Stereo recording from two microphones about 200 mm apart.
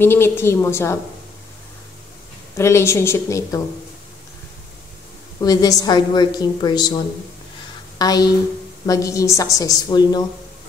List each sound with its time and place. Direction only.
0.0 s a woman's voice: 10° left (ahead or behind)
2.5 s a woman's voice: 15° left (ahead or behind)
5.4 s a woman's voice: 20° left (ahead or behind)
8.0 s a woman's voice: 20° left (ahead or behind)